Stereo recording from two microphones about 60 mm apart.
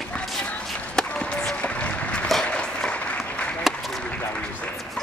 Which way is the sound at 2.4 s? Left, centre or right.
Centre.